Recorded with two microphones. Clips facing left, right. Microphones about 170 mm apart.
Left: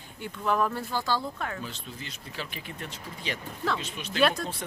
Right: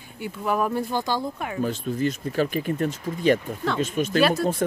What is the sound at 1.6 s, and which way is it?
Speech, 50° right (ahead or behind).